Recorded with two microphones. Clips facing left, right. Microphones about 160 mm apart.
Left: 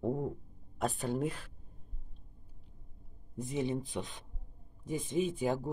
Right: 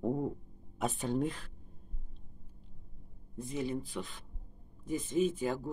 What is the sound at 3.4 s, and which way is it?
Speech, 20° left (ahead or behind).